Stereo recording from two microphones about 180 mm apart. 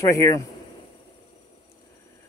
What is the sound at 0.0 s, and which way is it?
Speech, 15° left (ahead or behind).